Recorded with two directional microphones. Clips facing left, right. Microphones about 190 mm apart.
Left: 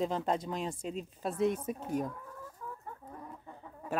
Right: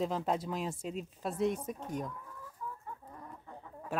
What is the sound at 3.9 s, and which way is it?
Gargling, centre (ahead or behind).